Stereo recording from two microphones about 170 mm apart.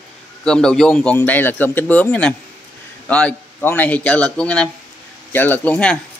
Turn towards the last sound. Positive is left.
turn(degrees=5)  # may be behind; listen again after turning